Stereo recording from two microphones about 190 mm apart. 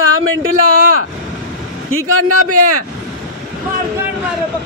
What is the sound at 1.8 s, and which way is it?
Speech, 90° right.